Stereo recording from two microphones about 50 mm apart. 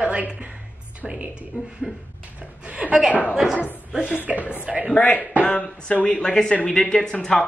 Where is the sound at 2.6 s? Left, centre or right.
Right.